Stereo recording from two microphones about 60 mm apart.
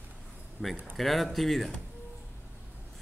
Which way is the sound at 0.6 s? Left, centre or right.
Right.